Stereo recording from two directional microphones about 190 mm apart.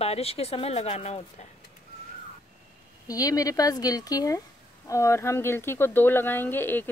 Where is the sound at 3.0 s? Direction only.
20° left (ahead or behind).